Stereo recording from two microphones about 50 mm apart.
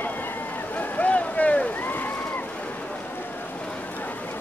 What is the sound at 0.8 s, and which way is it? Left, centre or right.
Boat, left.